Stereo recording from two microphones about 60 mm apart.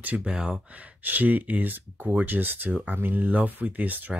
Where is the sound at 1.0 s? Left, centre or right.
Right.